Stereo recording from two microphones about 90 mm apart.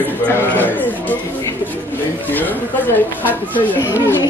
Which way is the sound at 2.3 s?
20° left (ahead or behind).